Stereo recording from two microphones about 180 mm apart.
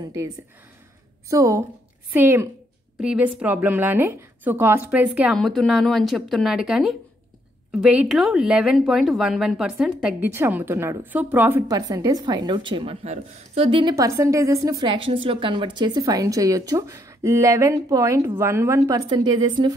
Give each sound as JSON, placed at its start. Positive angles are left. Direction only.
{"t": 0.0, "sound": "speech", "side_deg": -20}
{"t": 1.3, "sound": "a woman's voice", "side_deg": -15}
{"t": 13.9, "sound": "speech", "side_deg": -15}